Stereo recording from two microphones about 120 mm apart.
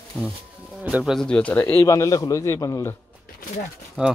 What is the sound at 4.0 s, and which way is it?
Speech, 10° right (ahead or behind).